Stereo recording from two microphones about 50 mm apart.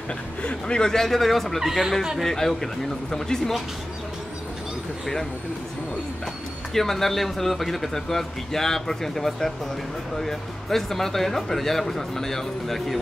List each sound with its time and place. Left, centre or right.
0.4 s speech: left
6.7 s speech: centre